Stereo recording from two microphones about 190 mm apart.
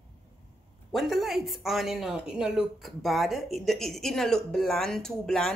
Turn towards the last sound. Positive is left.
turn(degrees=0)  # may be behind; listen again after turning